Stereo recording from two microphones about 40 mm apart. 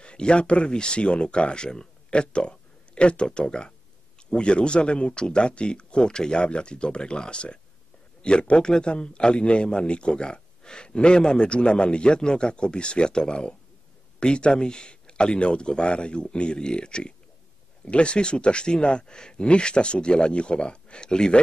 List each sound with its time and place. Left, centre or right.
0.0 s a man's voice: left